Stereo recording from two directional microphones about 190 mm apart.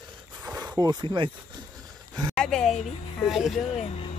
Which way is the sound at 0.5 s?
15° right (ahead or behind).